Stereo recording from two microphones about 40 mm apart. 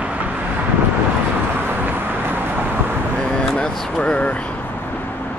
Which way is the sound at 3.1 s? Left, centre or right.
Left.